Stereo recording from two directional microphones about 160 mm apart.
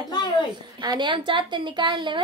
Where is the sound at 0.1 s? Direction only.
25° left (ahead or behind).